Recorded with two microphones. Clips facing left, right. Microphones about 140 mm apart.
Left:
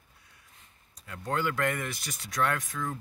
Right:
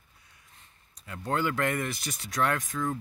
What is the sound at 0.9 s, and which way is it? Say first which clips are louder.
Speech: right 2 dB; 5° right (ahead or behind).